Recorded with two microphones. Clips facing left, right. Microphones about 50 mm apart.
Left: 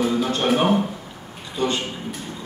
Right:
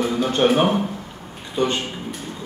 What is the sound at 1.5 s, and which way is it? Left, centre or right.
Speech, right.